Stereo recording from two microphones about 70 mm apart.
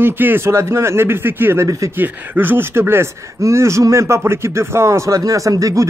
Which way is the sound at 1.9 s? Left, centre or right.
Right.